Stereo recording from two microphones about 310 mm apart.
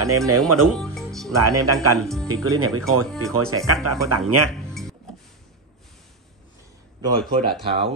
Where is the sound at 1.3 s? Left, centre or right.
Right.